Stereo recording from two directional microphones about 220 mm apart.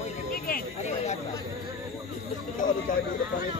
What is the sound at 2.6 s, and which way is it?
Speech, 35° left (ahead or behind).